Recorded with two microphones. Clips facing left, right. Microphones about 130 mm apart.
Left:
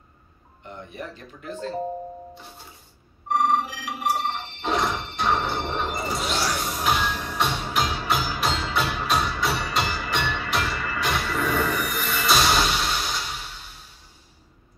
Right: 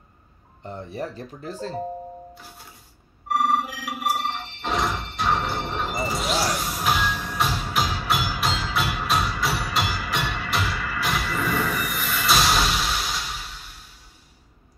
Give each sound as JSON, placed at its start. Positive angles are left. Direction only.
{"t": 0.7, "sound": "speech", "side_deg": -35}
{"t": 3.3, "sound": "music", "side_deg": 0}